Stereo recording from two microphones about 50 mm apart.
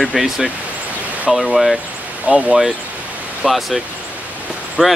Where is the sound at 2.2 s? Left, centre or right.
Right.